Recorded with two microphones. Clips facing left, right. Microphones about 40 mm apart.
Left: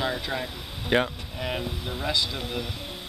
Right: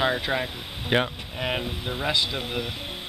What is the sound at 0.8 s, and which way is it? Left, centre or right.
Speech, centre.